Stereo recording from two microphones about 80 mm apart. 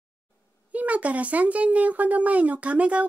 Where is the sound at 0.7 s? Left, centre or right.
Centre.